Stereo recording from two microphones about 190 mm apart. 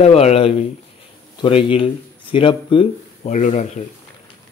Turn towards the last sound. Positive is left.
turn(degrees=40)  # may be behind; listen again after turning